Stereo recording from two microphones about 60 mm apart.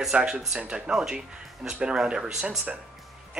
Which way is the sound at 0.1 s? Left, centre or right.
Right.